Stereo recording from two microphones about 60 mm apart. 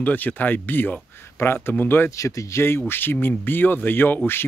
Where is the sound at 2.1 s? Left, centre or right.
Left.